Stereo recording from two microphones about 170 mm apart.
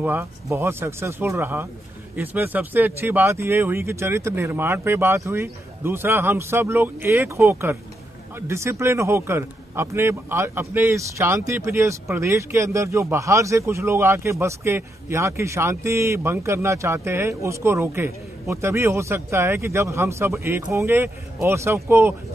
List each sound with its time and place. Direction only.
0.0 s a man's voice: 15° right (ahead or behind)